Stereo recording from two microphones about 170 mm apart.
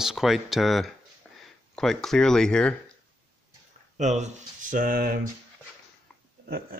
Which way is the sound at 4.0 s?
45° right (ahead or behind).